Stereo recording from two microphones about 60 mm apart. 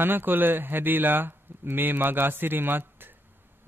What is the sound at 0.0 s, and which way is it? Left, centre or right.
Speech, right.